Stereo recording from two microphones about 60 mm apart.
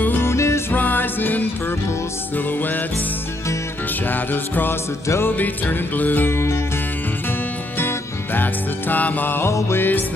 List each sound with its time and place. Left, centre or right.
0.0 s music: left
0.3 s music: left
0.7 s music: left
4.1 s music: left
7.8 s music: left
9.5 s music: left